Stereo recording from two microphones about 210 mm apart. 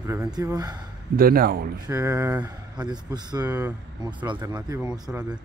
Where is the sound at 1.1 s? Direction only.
45° right (ahead or behind).